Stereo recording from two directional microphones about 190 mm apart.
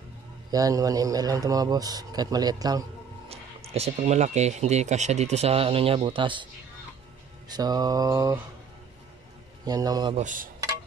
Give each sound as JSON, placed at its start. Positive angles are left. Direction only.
{"t": 0.5, "sound": "a man's voice", "side_deg": -20}
{"t": 3.3, "sound": "speech", "side_deg": -35}
{"t": 7.4, "sound": "a man's voice", "side_deg": -20}
{"t": 9.7, "sound": "a man's voice", "side_deg": -20}
{"t": 10.1, "sound": "dishes", "side_deg": -45}